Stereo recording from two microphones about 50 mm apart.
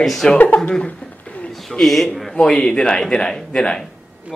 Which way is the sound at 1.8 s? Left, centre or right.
Centre.